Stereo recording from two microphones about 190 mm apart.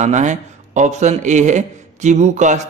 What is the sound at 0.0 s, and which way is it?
A man's voice, 40° right (ahead or behind).